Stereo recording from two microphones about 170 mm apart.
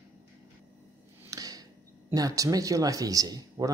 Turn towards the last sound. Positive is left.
turn(degrees=-20)  # may be behind; listen again after turning